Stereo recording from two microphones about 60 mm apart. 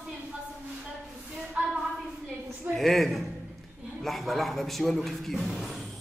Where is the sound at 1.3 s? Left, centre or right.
Centre.